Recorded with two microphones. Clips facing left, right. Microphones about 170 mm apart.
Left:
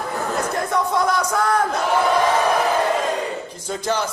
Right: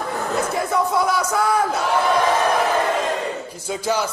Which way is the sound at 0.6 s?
5° right (ahead or behind).